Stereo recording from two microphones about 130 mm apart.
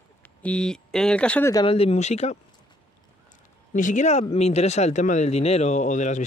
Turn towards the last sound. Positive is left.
turn(degrees=70)  # may be behind; listen again after turning